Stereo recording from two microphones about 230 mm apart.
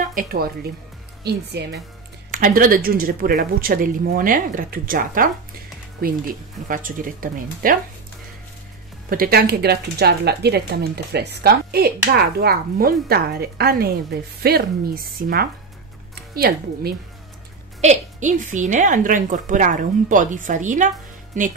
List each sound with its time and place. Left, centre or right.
0.0 s speech: right
2.3 s speech: right
9.1 s speech: right
17.7 s speech: right